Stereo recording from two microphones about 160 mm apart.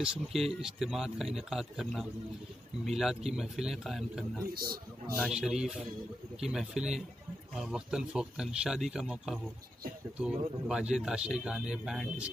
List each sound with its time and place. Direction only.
0.0 s speech: centre (ahead or behind)
4.6 s a man's voice: 70° right (ahead or behind)
5.1 s speech: centre (ahead or behind)